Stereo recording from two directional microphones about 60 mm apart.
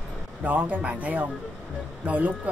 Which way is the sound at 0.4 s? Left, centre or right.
Right.